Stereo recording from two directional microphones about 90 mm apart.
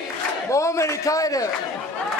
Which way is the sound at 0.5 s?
35° left (ahead or behind).